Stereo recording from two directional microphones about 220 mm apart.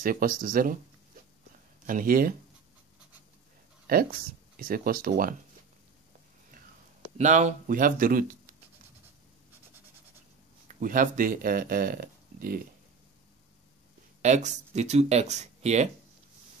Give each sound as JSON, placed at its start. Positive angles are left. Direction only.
{"t": 0.0, "sound": "speech", "side_deg": -40}
{"t": 1.9, "sound": "speech", "side_deg": -40}
{"t": 3.8, "sound": "speech", "side_deg": -40}
{"t": 7.2, "sound": "speech", "side_deg": -35}
{"t": 10.7, "sound": "speech", "side_deg": -40}
{"t": 14.2, "sound": "speech", "side_deg": -35}